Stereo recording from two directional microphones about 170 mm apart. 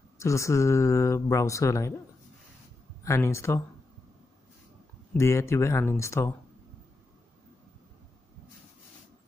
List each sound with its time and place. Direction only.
0.2 s speech: 15° left (ahead or behind)
3.0 s speech: 15° left (ahead or behind)
5.1 s speech: 15° left (ahead or behind)